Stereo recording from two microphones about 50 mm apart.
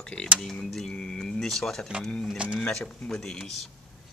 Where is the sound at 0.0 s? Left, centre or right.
Centre.